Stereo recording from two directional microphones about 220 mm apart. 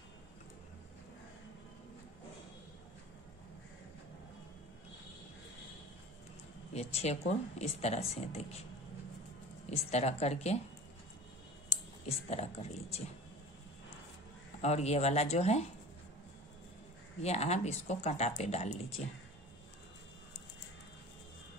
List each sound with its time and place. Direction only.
6.7 s speech: 30° left (ahead or behind)
9.7 s speech: 30° left (ahead or behind)
11.7 s speech: 30° left (ahead or behind)
14.6 s speech: 30° left (ahead or behind)
17.2 s speech: 30° left (ahead or behind)